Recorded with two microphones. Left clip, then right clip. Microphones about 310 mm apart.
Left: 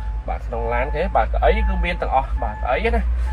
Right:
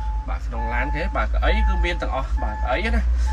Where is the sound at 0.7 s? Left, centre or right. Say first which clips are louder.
Left 3 dB; centre.